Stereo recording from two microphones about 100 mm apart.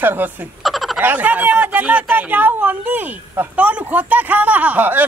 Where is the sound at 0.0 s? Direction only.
20° right (ahead or behind).